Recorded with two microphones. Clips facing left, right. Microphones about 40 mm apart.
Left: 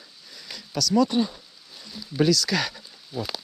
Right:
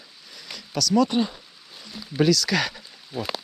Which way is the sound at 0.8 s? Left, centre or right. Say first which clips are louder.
Right 1 dB; right.